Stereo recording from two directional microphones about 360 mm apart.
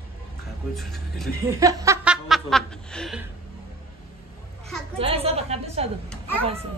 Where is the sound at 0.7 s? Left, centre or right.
Centre.